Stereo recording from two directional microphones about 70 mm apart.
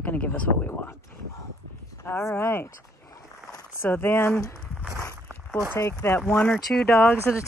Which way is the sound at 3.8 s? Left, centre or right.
Left.